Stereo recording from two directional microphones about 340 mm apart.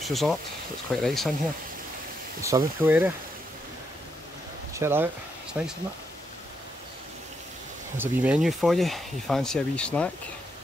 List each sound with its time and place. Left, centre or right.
0.0 s speech: centre
2.4 s speech: centre
4.7 s speech: centre
8.0 s speech: centre